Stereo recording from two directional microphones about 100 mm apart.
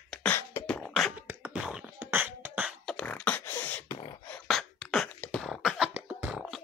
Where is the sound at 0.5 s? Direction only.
25° left (ahead or behind).